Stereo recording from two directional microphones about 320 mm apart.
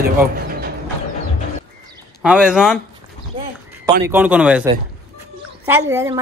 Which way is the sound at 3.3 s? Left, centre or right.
Centre.